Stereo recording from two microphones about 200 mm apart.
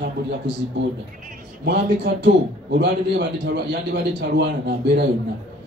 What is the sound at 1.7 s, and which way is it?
A man's voice, 60° right (ahead or behind).